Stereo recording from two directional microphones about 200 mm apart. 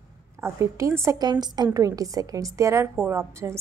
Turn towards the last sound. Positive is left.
turn(degrees=-15)  # may be behind; listen again after turning